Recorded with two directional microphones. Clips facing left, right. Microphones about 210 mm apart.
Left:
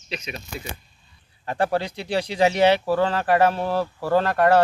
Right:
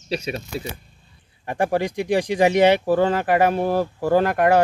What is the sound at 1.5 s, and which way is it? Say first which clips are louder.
Speech: right 2 dB; 15° right (ahead or behind).